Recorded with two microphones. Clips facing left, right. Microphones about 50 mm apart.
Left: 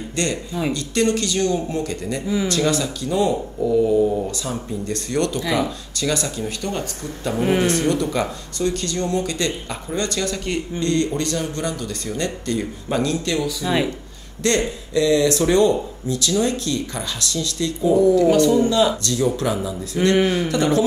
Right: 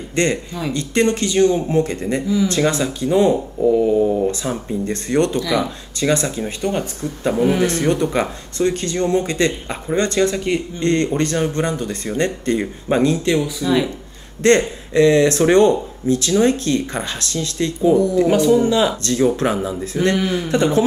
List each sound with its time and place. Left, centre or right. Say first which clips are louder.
0.1 s a man's voice: right 5 dB; right
4.3 s speech: right 4 dB; right
10.8 s speech: right 2 dB; right
18.4 s speech: right 1 dB; centre
19.0 s speech: right 4 dB; right